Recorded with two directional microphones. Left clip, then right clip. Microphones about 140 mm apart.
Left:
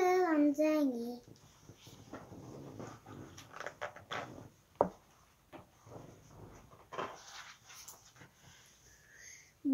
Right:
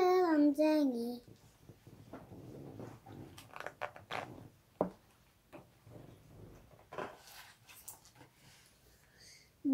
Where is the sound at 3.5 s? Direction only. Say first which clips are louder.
Even; 10° left (ahead or behind).